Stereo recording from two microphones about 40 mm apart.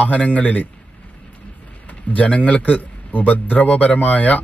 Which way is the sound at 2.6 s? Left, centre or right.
Left.